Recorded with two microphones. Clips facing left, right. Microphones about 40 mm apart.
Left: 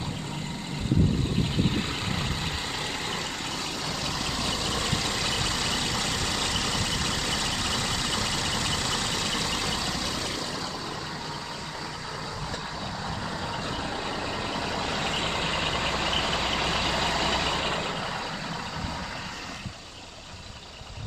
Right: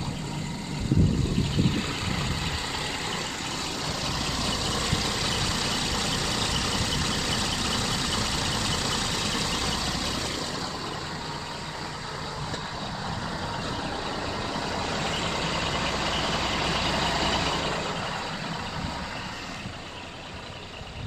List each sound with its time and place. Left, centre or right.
4.0 s vehicle: centre
14.5 s vehicle: centre
15.7 s vehicle: centre
17.6 s vehicle: centre